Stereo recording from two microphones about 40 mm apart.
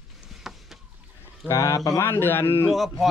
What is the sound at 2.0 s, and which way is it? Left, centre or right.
Speech, left.